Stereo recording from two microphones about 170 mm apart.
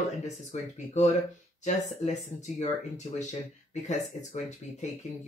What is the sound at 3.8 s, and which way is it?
Speech, 45° left (ahead or behind).